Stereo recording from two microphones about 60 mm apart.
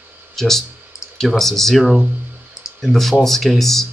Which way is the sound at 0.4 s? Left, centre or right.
Centre.